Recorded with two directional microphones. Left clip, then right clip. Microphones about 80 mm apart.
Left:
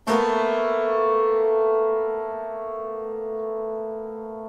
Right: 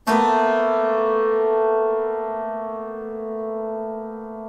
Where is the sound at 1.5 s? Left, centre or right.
Right.